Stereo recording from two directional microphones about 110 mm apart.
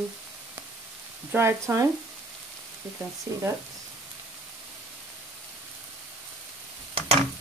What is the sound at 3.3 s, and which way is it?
Speech, 25° right (ahead or behind).